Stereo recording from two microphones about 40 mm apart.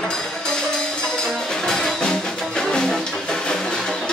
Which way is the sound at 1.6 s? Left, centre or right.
Centre.